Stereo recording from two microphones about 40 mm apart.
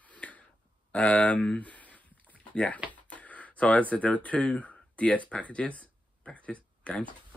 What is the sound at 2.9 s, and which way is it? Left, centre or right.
Speech, left.